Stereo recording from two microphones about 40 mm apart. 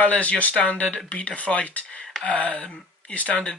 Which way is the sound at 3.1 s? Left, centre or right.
Left.